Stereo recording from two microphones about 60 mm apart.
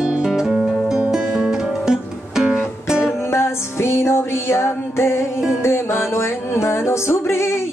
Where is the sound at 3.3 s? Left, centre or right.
Left.